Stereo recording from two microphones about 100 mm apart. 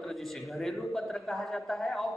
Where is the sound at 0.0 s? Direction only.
Centre (ahead or behind).